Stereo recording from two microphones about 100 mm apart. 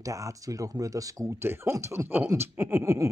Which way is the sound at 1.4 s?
25° right (ahead or behind).